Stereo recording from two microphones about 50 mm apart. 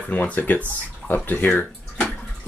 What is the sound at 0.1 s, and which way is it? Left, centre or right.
Speech, left.